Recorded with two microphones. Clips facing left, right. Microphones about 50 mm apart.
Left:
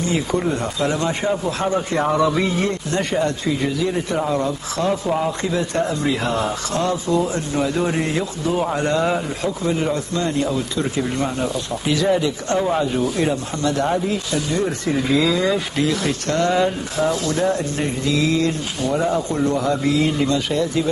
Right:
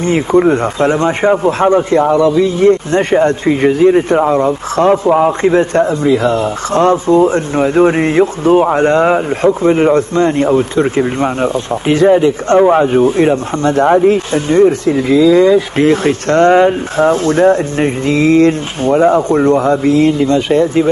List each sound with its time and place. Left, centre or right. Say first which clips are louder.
0.0 s speech: right 10 dB; right